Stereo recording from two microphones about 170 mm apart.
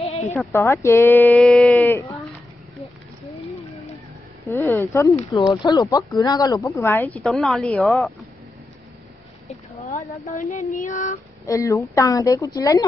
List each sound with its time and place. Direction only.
0.0 s a sound: 35° left (ahead or behind)
0.5 s speech: 15° left (ahead or behind)
1.4 s a sound: centre (ahead or behind)
1.8 s speech: 15° left (ahead or behind)
4.5 s speech: 15° left (ahead or behind); by 8.3 s centre (ahead or behind)
9.8 s speech: 50° left (ahead or behind)
11.4 s speech: 20° left (ahead or behind)